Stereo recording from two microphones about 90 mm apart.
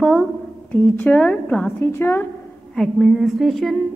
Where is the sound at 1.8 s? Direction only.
30° left (ahead or behind).